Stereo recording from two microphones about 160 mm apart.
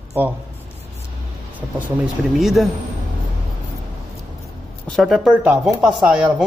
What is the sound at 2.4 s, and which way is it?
Speech, centre (ahead or behind).